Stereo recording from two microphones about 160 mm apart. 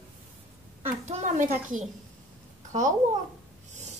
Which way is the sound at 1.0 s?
45° right (ahead or behind).